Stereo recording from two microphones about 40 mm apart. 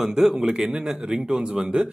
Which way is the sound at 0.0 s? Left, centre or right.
Centre.